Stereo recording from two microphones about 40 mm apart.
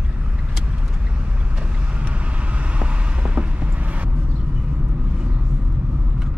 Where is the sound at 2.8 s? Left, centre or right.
Right.